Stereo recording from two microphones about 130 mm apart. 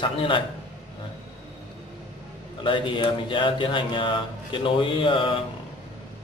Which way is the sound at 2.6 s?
40° left (ahead or behind).